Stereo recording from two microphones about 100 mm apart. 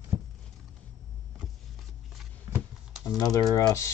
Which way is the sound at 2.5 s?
45° right (ahead or behind).